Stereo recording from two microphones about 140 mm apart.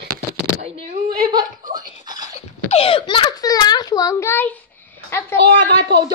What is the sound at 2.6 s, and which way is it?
A child's voice, 45° left (ahead or behind).